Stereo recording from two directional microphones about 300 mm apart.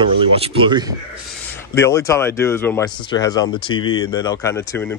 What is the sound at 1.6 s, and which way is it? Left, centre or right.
Speech, centre.